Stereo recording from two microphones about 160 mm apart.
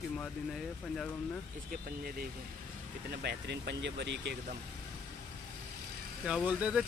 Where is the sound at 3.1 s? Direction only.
90° right.